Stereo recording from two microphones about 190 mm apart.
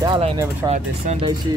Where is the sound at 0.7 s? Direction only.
35° right (ahead or behind).